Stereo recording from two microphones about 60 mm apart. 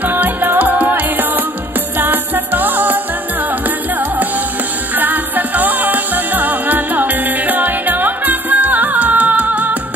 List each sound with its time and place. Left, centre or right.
0.0 s music: right
4.9 s music: right